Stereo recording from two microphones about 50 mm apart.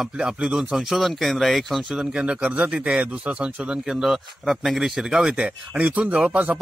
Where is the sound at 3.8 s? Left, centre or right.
Centre.